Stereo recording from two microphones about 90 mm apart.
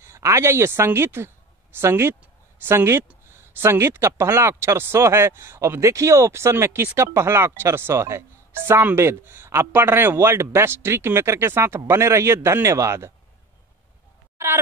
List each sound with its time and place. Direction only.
0.0 s speech: 35° right (ahead or behind)